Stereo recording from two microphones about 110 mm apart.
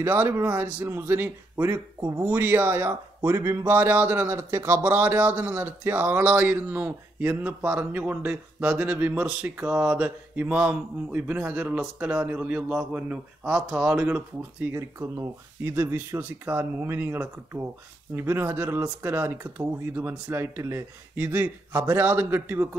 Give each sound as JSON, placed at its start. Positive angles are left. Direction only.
{"t": 0.0, "sound": "speech", "side_deg": -20}
{"t": 14.0, "sound": "speech", "side_deg": -20}